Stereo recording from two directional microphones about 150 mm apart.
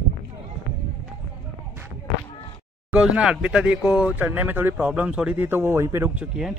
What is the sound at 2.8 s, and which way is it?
A man's voice, 5° right (ahead or behind).